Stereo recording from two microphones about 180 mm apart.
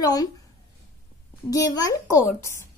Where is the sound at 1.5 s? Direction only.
20° left (ahead or behind).